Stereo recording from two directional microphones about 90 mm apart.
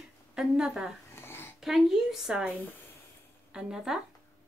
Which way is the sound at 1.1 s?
25° left (ahead or behind).